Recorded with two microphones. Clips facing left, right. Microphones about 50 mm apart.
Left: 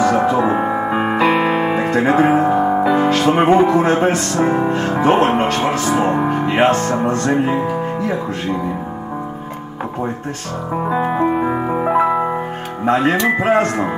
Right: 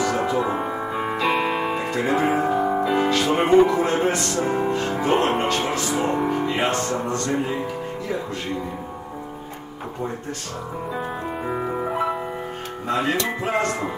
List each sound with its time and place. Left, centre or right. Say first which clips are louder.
0.0 s music: left 7 dB; left
3.0 s speech: left 6 dB; left
10.9 s music: left 13 dB; left
11.9 s music: left 9 dB; left
12.8 s speech: left 8 dB; left